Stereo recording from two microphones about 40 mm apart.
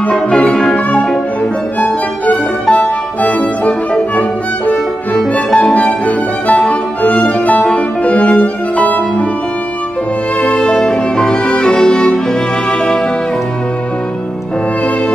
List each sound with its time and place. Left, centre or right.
0.3 s music: left
2.7 s music: left
4.2 s violin: left
5.7 s music: left
10.4 s music: left